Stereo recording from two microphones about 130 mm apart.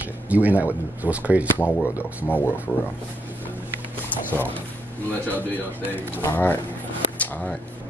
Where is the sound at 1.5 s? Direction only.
15° left (ahead or behind).